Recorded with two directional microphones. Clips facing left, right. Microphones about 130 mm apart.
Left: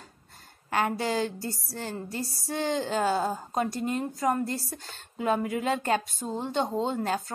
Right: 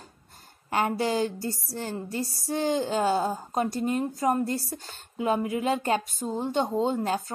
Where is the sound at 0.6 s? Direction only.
25° right (ahead or behind).